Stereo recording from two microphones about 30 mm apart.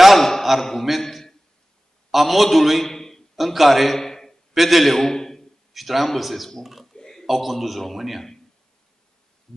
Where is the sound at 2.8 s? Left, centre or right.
Centre.